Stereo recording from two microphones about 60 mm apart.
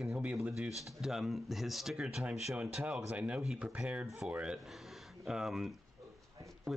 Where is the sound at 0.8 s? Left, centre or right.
Centre.